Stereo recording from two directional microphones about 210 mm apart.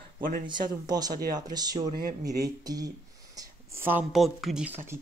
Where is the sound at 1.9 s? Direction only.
40° right (ahead or behind).